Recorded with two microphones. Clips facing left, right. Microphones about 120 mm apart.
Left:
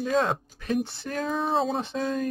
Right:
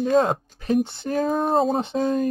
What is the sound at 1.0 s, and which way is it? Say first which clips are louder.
Speech: right 6 dB; 40° right (ahead or behind).